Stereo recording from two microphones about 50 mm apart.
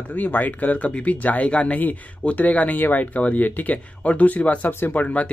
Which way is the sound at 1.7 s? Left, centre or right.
Left.